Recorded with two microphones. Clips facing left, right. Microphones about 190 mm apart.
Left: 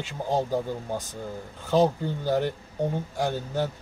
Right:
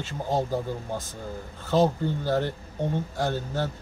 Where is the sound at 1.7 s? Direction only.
15° left (ahead or behind).